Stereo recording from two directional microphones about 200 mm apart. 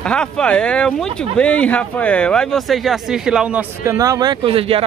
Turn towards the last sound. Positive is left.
turn(degrees=-25)  # may be behind; listen again after turning